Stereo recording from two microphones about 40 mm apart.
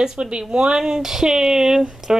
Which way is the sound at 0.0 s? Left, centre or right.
Right.